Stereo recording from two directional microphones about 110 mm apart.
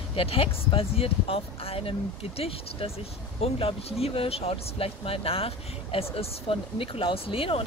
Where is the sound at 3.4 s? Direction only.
65° left (ahead or behind).